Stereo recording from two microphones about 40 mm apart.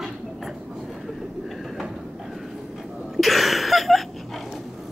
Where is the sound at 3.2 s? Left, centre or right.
Centre.